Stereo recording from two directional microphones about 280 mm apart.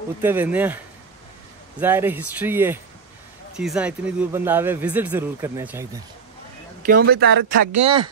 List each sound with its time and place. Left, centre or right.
0.2 s speech: centre
1.8 s speech: centre
7.0 s speech: right
7.8 s speech: centre